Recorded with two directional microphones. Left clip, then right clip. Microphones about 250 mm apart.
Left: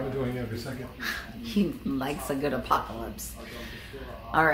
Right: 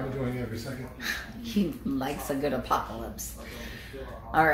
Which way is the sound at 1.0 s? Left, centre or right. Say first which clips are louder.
Even; centre.